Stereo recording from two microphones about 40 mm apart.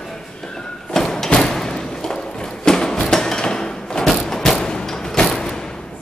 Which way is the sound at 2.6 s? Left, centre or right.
Centre.